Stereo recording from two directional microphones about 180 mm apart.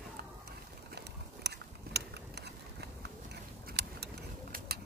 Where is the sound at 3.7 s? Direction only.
65° right (ahead or behind).